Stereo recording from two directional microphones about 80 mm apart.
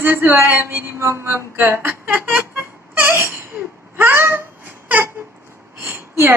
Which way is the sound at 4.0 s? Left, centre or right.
Right.